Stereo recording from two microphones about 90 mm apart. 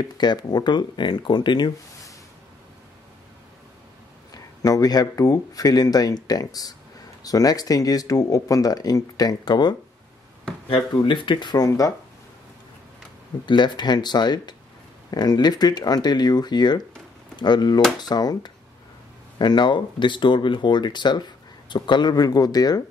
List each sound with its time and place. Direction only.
0.2 s speech: 50° left (ahead or behind)
4.3 s speech: 40° left (ahead or behind)
10.7 s speech: 65° left (ahead or behind); by 11.9 s 40° left (ahead or behind)
13.5 s speech: 55° left (ahead or behind)